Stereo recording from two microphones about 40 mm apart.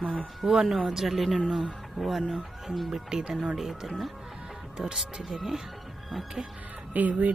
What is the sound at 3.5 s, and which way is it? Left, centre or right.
Speech, centre.